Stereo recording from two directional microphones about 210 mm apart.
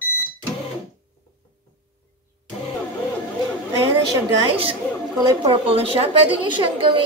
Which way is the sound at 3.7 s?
20° right (ahead or behind).